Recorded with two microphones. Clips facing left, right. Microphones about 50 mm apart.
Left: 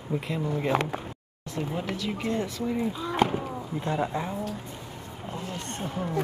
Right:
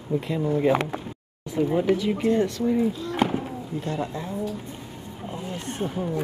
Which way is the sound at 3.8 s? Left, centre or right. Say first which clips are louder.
Left 2 dB; centre.